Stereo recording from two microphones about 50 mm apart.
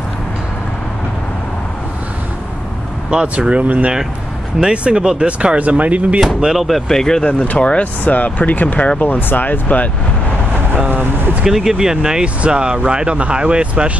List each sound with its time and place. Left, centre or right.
3.1 s speech: right
4.6 s speech: centre
6.5 s speech: centre
6.9 s speech: centre
7.5 s speech: left
8.0 s speech: left
10.7 s speech: right
11.4 s speech: centre; by 13.9 s right